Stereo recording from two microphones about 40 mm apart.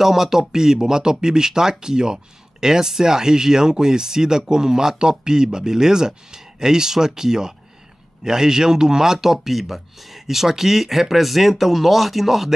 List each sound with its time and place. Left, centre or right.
0.0 s speech: centre